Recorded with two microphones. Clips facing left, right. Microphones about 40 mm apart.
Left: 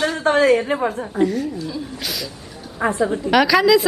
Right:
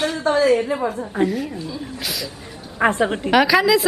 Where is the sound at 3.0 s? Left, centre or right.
Right.